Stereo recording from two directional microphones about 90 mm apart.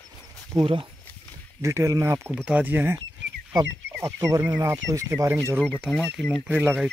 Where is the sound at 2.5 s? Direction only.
20° right (ahead or behind).